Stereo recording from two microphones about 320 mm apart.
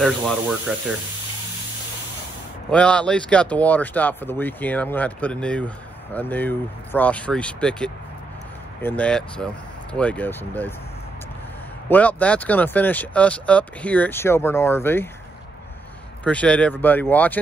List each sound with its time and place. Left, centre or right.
0.0 s speech: centre
2.7 s speech: centre
11.9 s speech: centre
16.3 s speech: centre